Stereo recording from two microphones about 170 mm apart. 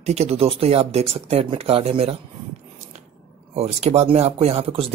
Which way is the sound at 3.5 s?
40° right (ahead or behind).